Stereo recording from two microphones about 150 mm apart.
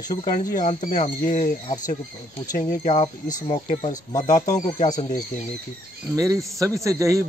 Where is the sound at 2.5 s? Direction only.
60° left (ahead or behind).